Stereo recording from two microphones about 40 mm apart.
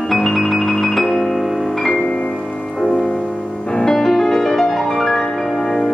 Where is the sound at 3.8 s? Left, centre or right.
Centre.